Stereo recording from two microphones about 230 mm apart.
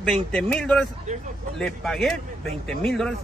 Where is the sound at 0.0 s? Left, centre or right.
Centre.